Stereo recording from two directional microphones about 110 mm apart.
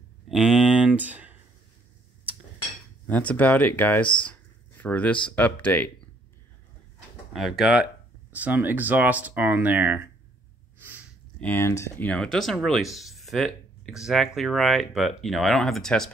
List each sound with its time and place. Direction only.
0.3 s a sound: 5° right (ahead or behind)
3.1 s speech: 15° left (ahead or behind)
7.3 s speech: centre (ahead or behind); by 10.0 s 15° right (ahead or behind)
11.3 s speech: 15° left (ahead or behind)
12.1 s speech: 5° left (ahead or behind)